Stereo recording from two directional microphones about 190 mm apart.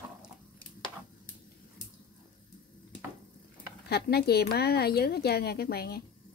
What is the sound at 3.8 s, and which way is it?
Speech, 55° left (ahead or behind).